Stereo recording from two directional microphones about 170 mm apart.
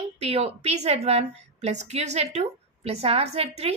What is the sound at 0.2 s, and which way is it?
A woman's voice, 35° right (ahead or behind).